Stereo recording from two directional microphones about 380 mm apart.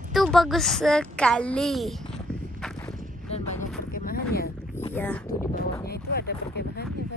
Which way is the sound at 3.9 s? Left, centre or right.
Left.